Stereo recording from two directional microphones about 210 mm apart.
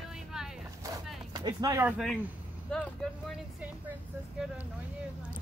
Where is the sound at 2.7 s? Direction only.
5° left (ahead or behind).